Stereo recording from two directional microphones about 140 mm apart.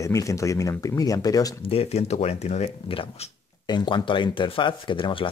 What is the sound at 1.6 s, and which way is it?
Speech, 45° left (ahead or behind).